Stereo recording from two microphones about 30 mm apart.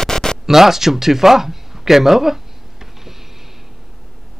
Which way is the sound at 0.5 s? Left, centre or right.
Centre.